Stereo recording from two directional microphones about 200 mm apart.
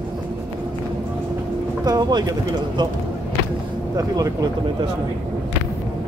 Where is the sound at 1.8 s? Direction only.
20° right (ahead or behind).